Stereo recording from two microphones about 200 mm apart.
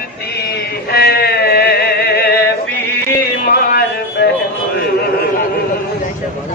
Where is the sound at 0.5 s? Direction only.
50° left (ahead or behind).